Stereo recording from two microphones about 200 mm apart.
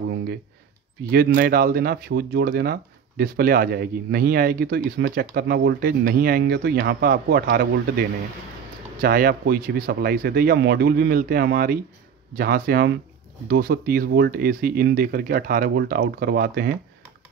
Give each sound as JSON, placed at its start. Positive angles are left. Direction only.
{"t": 1.1, "sound": "speech", "side_deg": -50}
{"t": 9.0, "sound": "speech", "side_deg": -45}